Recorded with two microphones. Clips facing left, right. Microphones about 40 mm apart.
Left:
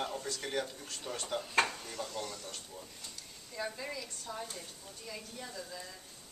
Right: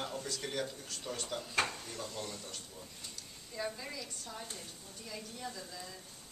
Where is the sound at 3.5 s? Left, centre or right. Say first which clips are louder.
Left 1 dB; centre.